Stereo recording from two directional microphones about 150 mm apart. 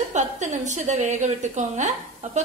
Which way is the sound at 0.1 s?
55° right (ahead or behind).